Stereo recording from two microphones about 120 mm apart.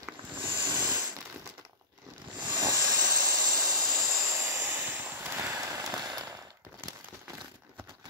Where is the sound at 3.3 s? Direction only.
35° right (ahead or behind).